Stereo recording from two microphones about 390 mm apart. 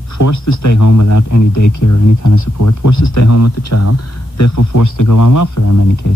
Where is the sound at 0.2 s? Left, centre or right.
Left.